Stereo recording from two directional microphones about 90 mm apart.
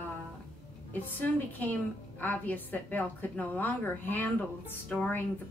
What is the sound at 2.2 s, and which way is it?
A woman's voice, 20° left (ahead or behind).